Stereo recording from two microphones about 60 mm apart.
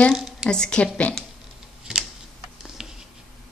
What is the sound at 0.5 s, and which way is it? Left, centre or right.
Speech, centre.